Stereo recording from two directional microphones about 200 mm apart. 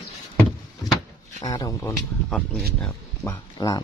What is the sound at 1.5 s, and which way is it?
Speech, 20° left (ahead or behind).